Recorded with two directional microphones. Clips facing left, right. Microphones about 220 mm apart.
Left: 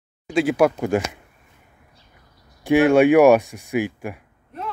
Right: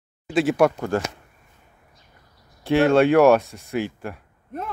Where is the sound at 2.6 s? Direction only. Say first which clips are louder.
Left 2 dB; 15° left (ahead or behind).